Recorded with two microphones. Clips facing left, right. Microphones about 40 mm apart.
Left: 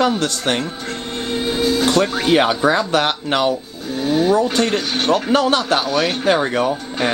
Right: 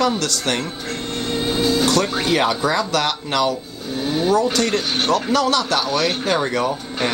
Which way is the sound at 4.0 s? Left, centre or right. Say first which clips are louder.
Left 3 dB; centre.